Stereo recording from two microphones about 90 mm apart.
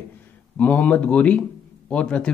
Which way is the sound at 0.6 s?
15° left (ahead or behind).